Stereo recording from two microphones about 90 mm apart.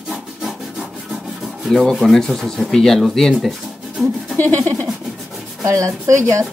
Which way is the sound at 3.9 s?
5° right (ahead or behind).